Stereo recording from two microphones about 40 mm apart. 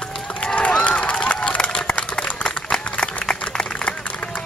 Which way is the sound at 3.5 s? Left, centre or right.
Centre.